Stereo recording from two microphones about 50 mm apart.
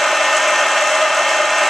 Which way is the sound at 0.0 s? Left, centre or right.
Centre.